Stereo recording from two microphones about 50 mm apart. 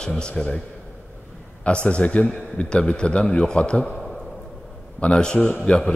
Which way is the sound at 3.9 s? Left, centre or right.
Centre.